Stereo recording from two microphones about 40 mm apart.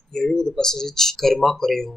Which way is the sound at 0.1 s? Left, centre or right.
Centre.